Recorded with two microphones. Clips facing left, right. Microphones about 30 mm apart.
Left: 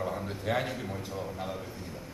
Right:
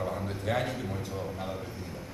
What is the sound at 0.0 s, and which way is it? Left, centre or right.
A man's voice, centre.